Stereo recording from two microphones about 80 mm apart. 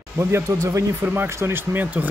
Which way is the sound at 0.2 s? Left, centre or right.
Right.